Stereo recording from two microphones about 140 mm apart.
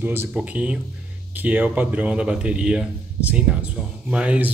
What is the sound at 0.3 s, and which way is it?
Speech, 5° right (ahead or behind).